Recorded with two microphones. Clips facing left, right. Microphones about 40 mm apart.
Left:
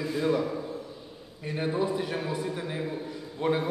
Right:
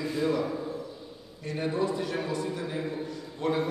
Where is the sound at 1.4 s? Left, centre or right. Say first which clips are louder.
Even; centre.